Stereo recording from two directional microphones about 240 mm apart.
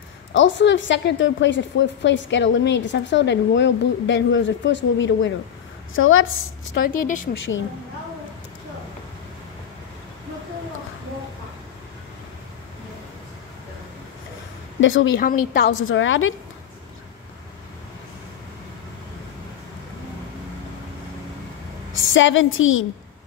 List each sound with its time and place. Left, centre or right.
0.3 s a woman's voice: left
7.3 s a woman's voice: left
14.8 s speech: left
15.1 s a woman's voice: left
15.6 s a woman's voice: left
21.9 s a woman's voice: left